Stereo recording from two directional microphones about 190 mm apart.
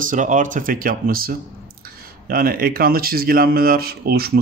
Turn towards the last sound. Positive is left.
turn(degrees=-55)  # may be behind; listen again after turning